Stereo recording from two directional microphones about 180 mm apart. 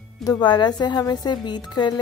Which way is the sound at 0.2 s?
25° left (ahead or behind).